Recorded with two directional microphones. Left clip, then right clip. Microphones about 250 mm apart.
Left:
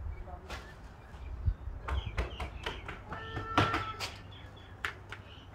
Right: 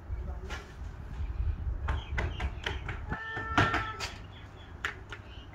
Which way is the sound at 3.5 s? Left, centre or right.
Left.